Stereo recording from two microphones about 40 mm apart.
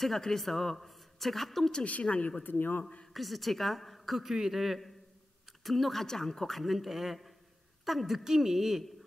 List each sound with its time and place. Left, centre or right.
0.0 s a woman's voice: centre
1.9 s a woman's voice: left
3.1 s a woman's voice: centre